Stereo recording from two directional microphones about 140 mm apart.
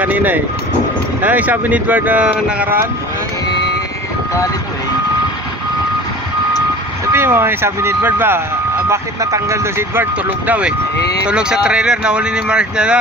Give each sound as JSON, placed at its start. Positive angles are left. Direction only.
{"t": 0.0, "sound": "speech", "side_deg": -10}
{"t": 7.1, "sound": "speech", "side_deg": -15}